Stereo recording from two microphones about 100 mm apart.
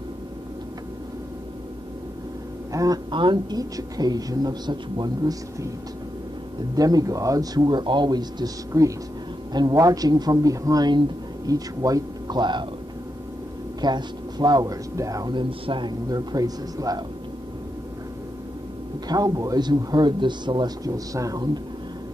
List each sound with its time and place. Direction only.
2.7 s a man's voice: 35° right (ahead or behind)
3.1 s a man's voice: 50° right (ahead or behind)
6.7 s a man's voice: 40° right (ahead or behind)
13.7 s a man's voice: 45° right (ahead or behind)
15.3 s a man's voice: 55° right (ahead or behind); by 17.0 s 40° right (ahead or behind)
19.0 s a man's voice: 40° right (ahead or behind)